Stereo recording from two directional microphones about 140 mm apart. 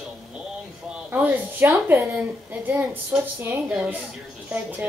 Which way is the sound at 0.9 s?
10° right (ahead or behind).